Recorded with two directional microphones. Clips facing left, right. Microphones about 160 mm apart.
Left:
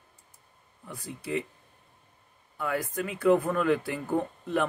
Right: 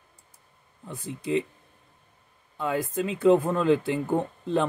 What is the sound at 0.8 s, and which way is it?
Speech, 25° right (ahead or behind).